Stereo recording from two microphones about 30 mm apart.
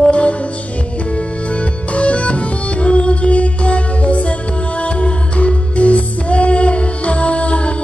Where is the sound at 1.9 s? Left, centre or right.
Left.